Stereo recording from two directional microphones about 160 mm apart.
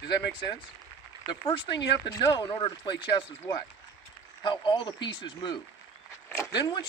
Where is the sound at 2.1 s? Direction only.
30° left (ahead or behind).